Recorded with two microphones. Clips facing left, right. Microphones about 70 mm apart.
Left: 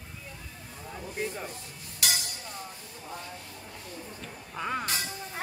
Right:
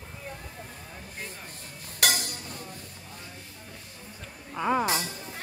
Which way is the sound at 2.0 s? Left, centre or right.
Right.